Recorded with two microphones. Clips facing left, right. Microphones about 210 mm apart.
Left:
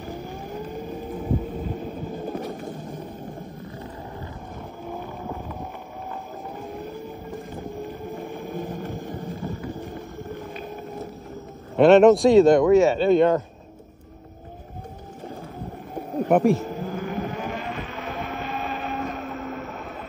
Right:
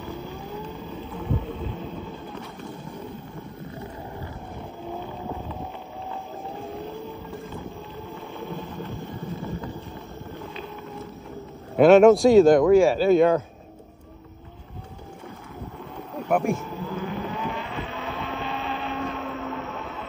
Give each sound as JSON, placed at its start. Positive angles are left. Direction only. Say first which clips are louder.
{"t": 0.0, "sound": "vehicle", "louder": "left 1 dB", "side_deg": 50}
{"t": 1.0, "sound": "a sound", "louder": "left 2 dB", "side_deg": 50}
{"t": 11.7, "sound": "speech", "louder": "even", "side_deg": 0}
{"t": 16.5, "sound": "vehicle", "louder": "left 2 dB", "side_deg": 45}